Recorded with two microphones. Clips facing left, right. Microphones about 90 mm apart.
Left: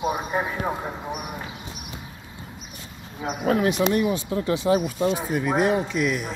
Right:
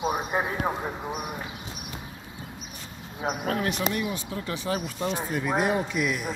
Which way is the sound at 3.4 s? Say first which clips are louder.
Left 9 dB; 20° left (ahead or behind).